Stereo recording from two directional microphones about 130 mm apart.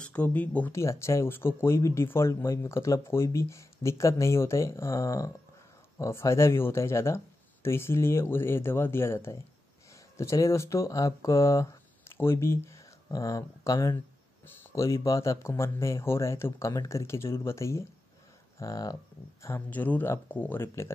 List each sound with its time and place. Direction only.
0.0 s speech: 10° left (ahead or behind); by 18.9 s 25° left (ahead or behind)
19.4 s speech: 15° left (ahead or behind)